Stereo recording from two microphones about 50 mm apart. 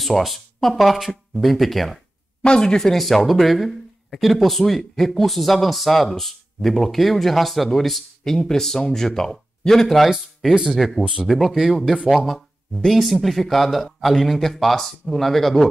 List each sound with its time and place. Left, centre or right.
0.0 s speech: centre
2.4 s speech: centre
10.0 s speech: centre
12.0 s speech: centre
12.3 s speech: centre